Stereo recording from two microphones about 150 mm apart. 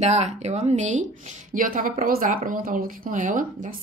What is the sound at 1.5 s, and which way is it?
Speech, 65° right (ahead or behind).